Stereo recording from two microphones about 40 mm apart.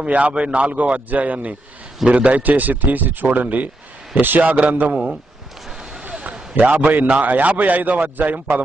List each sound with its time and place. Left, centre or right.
0.0 s a man's voice: right
6.0 s a sound: right
6.7 s a man's voice: right